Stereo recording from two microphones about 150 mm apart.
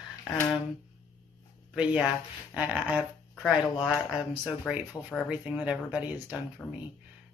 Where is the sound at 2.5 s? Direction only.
5° right (ahead or behind).